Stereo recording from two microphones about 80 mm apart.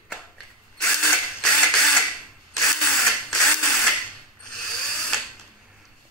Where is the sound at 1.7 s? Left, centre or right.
Centre.